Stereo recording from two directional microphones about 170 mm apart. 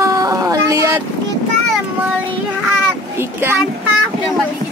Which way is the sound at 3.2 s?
15° right (ahead or behind).